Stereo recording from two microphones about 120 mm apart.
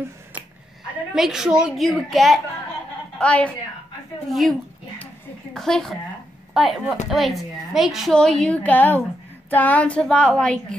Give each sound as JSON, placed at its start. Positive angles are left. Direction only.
{"t": 1.1, "sound": "a woman's voice", "side_deg": -5}
{"t": 4.3, "sound": "a woman's voice", "side_deg": 0}